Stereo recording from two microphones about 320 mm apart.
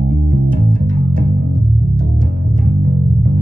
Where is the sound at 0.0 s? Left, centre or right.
Right.